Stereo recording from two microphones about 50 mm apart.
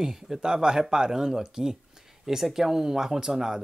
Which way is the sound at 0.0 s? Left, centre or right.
Centre.